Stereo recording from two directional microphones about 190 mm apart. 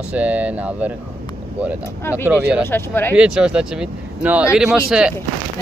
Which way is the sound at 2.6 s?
10° left (ahead or behind).